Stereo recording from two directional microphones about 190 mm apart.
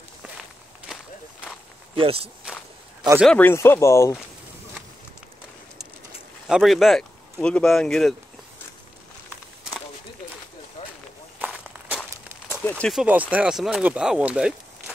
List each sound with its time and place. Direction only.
2.0 s speech: 30° right (ahead or behind)
3.3 s speech: 10° left (ahead or behind)
6.4 s speech: centre (ahead or behind)
11.3 s walk: 5° right (ahead or behind)
11.9 s a sound: 10° left (ahead or behind)
13.0 s speech: 10° right (ahead or behind)